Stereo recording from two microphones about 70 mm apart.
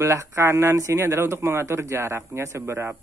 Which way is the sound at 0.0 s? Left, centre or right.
Right.